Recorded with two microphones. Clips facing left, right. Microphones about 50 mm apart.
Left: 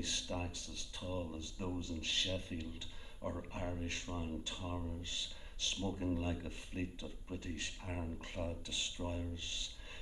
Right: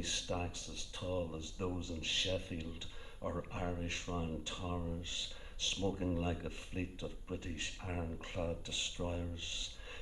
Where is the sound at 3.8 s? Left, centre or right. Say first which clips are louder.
Right 2 dB; right.